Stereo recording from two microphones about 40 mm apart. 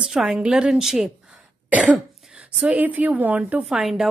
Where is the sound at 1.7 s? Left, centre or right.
Right.